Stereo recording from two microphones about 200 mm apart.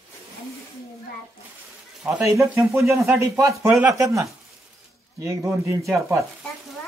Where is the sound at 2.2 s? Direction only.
15° right (ahead or behind).